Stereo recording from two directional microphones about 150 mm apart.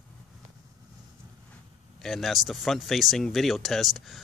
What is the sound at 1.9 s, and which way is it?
Speech, centre (ahead or behind).